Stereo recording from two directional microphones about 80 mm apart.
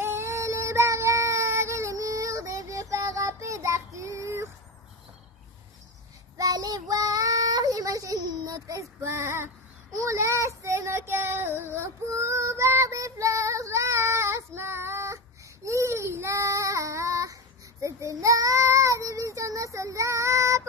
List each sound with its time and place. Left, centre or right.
0.0 s child singing: right
6.3 s child singing: right